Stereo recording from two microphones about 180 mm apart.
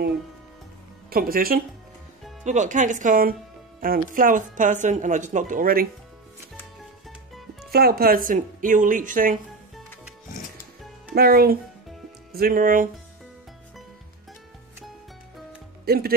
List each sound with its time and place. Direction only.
1.1 s speech: 55° right (ahead or behind)
2.4 s speech: 45° right (ahead or behind)
7.7 s speech: 60° right (ahead or behind)
11.1 s speech: 60° right (ahead or behind)
15.8 s speech: 60° right (ahead or behind)